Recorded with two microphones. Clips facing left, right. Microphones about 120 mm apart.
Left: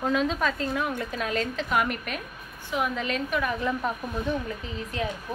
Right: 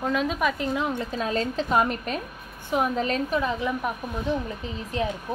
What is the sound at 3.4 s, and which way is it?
Speech, 20° right (ahead or behind).